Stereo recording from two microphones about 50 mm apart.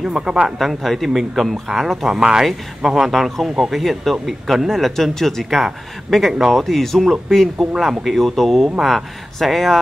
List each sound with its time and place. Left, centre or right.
0.0 s speech: centre
0.6 s speech: centre
3.7 s speech: centre
7.7 s speech: centre